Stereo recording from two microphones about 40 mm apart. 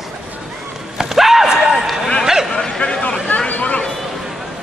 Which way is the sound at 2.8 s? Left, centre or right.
Left.